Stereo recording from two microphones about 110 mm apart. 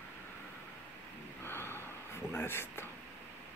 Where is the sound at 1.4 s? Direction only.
20° left (ahead or behind).